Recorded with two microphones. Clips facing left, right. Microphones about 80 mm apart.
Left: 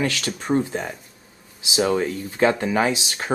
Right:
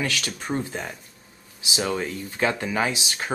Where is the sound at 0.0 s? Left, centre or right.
Left.